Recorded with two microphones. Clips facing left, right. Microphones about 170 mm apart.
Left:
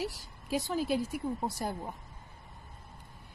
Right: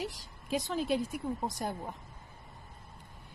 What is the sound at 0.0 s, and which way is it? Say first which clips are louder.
Speech: left 2 dB; 5° left (ahead or behind).